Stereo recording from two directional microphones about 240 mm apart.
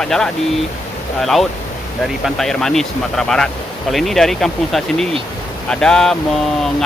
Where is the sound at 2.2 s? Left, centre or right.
Centre.